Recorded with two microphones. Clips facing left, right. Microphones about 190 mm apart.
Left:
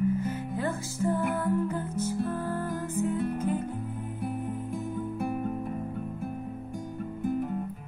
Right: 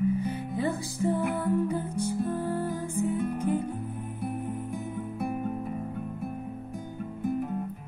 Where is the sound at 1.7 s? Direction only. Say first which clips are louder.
Right 1 dB; 15° right (ahead or behind).